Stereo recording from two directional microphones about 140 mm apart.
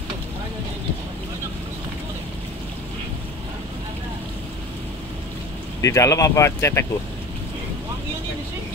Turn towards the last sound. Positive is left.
turn(degrees=20)  # may be behind; listen again after turning